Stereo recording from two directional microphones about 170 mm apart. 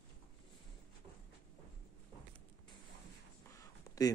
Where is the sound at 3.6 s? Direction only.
20° left (ahead or behind).